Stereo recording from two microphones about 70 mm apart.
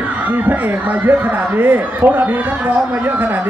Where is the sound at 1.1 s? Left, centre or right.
Right.